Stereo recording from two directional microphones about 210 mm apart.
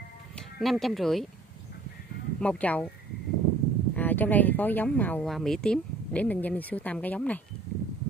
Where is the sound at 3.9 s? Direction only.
10° left (ahead or behind).